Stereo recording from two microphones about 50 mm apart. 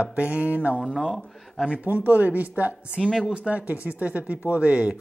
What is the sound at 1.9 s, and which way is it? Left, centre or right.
A woman's voice, right.